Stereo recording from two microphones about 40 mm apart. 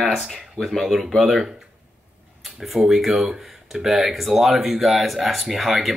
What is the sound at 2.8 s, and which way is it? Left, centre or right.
Speech, right.